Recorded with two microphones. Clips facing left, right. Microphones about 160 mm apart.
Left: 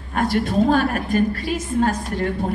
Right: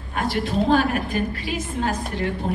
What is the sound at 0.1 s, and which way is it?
A woman's voice, 45° left (ahead or behind).